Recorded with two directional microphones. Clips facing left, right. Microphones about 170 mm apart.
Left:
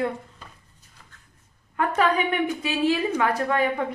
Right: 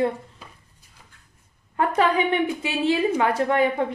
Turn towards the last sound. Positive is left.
turn(degrees=-25)  # may be behind; listen again after turning